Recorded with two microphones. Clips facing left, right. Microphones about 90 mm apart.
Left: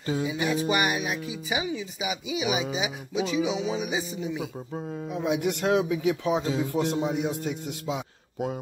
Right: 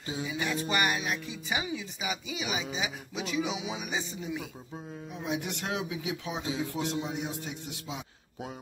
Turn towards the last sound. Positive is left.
turn(degrees=50)  # may be behind; listen again after turning